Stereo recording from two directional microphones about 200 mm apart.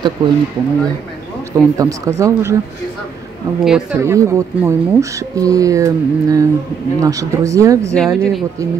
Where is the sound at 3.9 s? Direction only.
15° right (ahead or behind).